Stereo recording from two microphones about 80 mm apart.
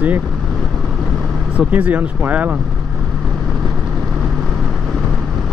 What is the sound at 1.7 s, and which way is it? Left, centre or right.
Speech, centre.